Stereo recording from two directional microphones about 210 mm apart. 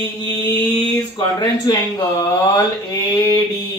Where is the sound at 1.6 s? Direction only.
20° left (ahead or behind).